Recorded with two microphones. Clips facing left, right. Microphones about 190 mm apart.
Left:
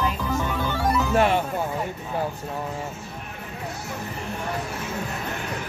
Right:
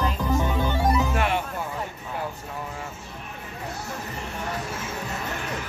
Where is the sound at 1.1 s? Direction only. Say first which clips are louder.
Left 5 dB; 35° left (ahead or behind).